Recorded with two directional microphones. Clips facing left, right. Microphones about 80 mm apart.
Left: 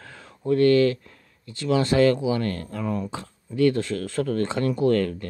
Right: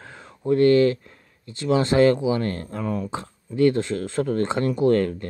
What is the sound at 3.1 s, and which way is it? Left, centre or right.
Speech, right.